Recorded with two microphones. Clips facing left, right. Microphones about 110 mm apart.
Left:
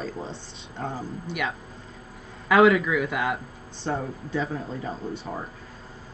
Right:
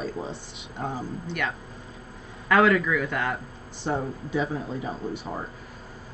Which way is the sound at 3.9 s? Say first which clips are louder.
Right 1 dB; 10° right (ahead or behind).